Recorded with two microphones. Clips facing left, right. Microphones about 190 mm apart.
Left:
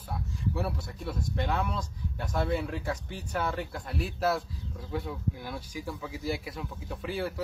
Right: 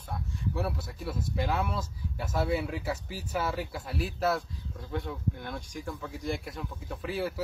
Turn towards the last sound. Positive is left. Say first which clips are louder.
# even
turn(degrees=0)  # may be behind; listen again after turning